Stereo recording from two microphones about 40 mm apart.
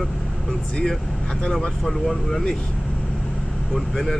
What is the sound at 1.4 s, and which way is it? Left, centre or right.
Speech, centre.